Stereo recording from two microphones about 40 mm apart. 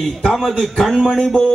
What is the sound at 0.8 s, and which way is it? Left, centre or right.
Speech, centre.